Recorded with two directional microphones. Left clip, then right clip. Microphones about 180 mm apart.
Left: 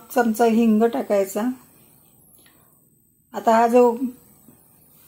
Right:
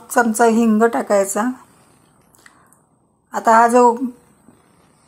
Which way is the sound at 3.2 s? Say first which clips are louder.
Right 5 dB; 5° right (ahead or behind).